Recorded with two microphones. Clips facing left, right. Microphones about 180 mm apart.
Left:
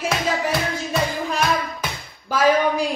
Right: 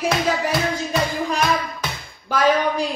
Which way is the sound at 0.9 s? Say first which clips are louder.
Right 1 dB; centre (ahead or behind).